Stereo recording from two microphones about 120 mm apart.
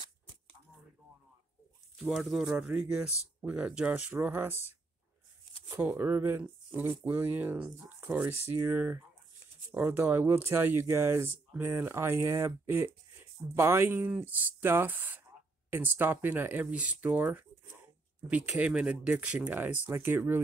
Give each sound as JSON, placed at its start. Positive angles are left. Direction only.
{"t": 2.0, "sound": "speech", "side_deg": 0}
{"t": 5.8, "sound": "speech", "side_deg": -15}